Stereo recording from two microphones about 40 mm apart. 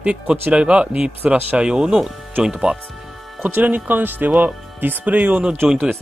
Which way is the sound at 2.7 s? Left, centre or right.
Right.